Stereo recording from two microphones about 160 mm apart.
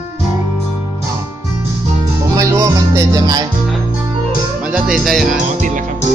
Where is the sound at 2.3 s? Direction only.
20° right (ahead or behind).